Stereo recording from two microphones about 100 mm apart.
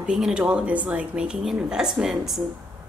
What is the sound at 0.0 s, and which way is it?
A woman's voice, 5° right (ahead or behind).